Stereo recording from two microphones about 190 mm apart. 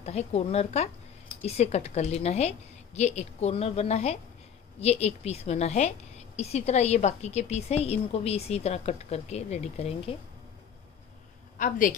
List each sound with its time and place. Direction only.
0.0 s a woman's voice: 35° left (ahead or behind)
11.5 s a woman's voice: 45° left (ahead or behind)